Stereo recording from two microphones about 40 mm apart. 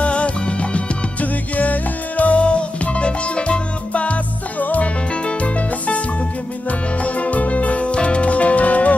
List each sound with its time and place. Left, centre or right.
0.0 s music: left
5.1 s music: left